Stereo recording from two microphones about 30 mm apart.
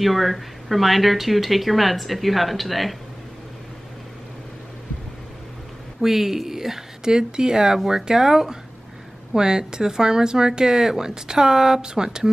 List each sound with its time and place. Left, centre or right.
0.0 s speech: centre
5.9 s speech: centre
7.1 s speech: right